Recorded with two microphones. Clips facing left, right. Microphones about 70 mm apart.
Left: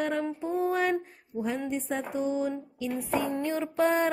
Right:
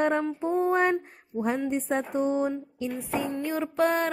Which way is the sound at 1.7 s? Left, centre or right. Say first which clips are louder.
Right 4 dB; right.